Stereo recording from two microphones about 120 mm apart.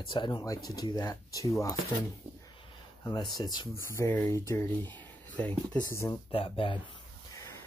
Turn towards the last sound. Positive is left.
turn(degrees=45)  # may be behind; listen again after turning